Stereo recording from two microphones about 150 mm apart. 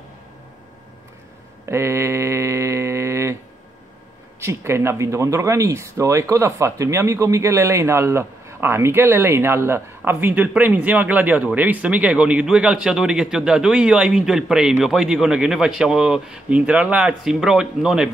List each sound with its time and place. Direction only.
1.7 s mantra: 20° right (ahead or behind)
4.4 s speech: 15° right (ahead or behind)